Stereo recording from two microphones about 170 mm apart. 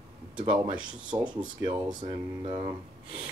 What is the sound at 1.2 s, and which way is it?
Speech, 25° right (ahead or behind).